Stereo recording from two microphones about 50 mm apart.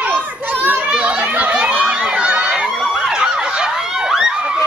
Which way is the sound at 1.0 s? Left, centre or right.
Right.